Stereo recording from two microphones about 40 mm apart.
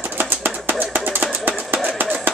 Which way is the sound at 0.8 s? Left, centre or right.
Right.